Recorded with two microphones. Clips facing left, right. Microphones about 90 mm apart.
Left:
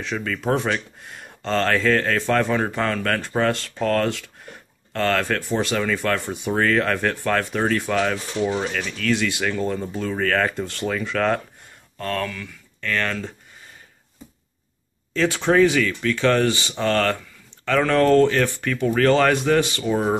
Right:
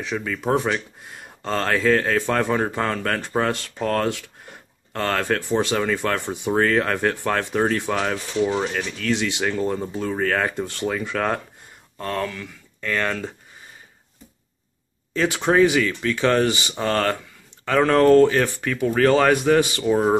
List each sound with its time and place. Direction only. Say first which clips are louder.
0.0 s speech: even; 10° right (ahead or behind)
15.1 s speech: even; 15° right (ahead or behind)